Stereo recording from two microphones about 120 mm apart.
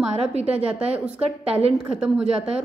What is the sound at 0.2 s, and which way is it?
Speech, 60° right (ahead or behind).